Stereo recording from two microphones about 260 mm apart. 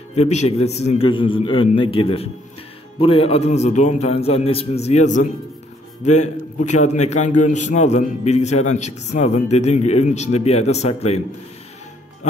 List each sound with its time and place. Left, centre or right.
0.1 s a man's voice: left